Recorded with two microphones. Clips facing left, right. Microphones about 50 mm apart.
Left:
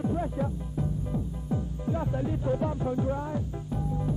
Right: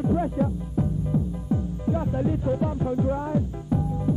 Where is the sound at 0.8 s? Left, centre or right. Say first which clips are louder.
Right 5 dB; centre.